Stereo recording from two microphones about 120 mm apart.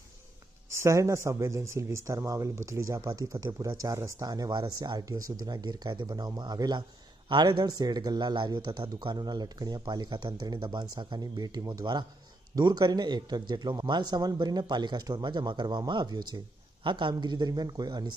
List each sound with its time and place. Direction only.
0.7 s speech: 25° right (ahead or behind)